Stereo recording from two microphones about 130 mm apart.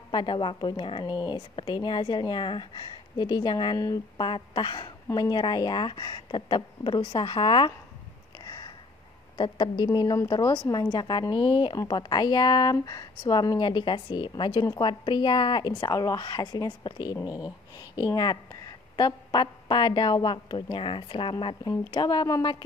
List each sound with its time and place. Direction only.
0.1 s speech: 40° left (ahead or behind)
4.2 s speech: 35° left (ahead or behind)
8.5 s a sound: 30° left (ahead or behind)
9.4 s speech: 35° left (ahead or behind)